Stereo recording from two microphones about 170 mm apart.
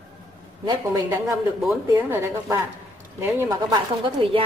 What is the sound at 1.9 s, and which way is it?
A woman's voice, 15° right (ahead or behind).